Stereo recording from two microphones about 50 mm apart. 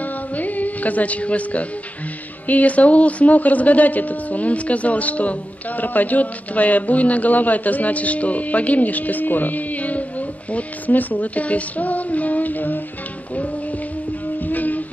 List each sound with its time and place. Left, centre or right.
0.0 s music: left
2.4 s speech: left
13.3 s music: left